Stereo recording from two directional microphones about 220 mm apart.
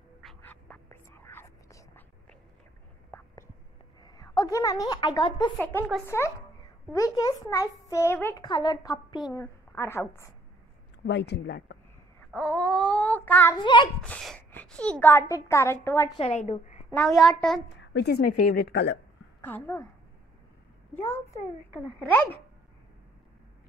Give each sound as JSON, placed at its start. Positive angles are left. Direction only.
{"t": 0.2, "sound": "whispering", "side_deg": 5}
{"t": 3.1, "sound": "whispering", "side_deg": 5}
{"t": 4.0, "sound": "a woman's voice", "side_deg": 15}
{"t": 5.6, "sound": "a woman's voice", "side_deg": 10}
{"t": 11.1, "sound": "speech", "side_deg": 50}
{"t": 12.3, "sound": "child singing", "side_deg": 5}
{"t": 13.6, "sound": "a child's voice", "side_deg": 20}
{"t": 14.0, "sound": "a woman's voice", "side_deg": 5}
{"t": 16.2, "sound": "a woman's voice", "side_deg": 30}
{"t": 16.9, "sound": "a child's voice", "side_deg": 0}
{"t": 17.6, "sound": "speech", "side_deg": 50}
{"t": 19.4, "sound": "a woman's voice", "side_deg": 10}
{"t": 20.9, "sound": "a child's voice", "side_deg": 10}